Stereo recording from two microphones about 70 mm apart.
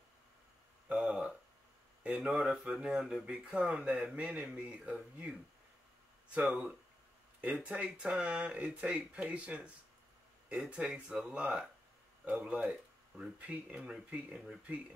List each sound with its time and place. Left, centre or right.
0.9 s speech: centre
7.4 s speech: centre